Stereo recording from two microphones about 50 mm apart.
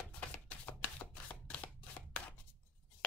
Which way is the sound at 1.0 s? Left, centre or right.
Left.